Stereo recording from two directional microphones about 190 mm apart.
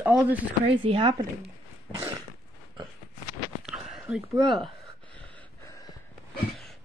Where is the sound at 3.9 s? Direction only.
5° right (ahead or behind).